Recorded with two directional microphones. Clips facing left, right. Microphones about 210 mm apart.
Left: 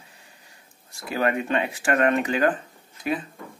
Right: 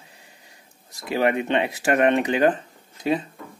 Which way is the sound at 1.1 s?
20° right (ahead or behind).